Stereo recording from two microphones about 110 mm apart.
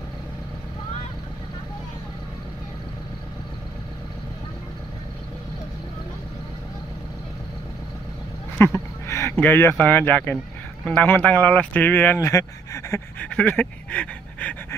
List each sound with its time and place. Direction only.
8.5 s speech: 20° left (ahead or behind)
12.3 s speech: 30° left (ahead or behind)
13.2 s speech: 10° left (ahead or behind)